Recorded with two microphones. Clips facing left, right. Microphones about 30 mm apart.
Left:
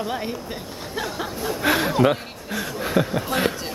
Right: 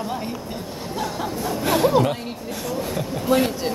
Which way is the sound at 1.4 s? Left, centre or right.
Centre.